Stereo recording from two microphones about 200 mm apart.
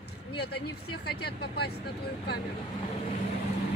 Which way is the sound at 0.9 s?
55° left (ahead or behind).